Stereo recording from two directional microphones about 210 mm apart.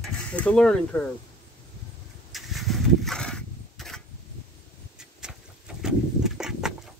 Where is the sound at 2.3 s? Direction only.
Centre (ahead or behind).